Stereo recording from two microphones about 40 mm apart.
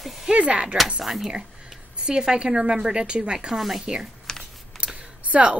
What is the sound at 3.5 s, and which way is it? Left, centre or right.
Speech, centre.